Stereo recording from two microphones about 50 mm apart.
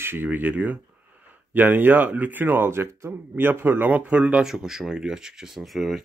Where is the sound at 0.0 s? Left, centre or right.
Right.